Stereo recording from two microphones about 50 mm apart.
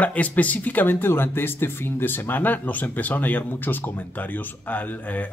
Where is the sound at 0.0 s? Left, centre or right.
Left.